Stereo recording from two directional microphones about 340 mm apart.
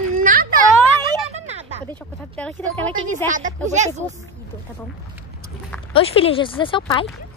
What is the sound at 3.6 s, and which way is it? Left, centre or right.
Speech, right.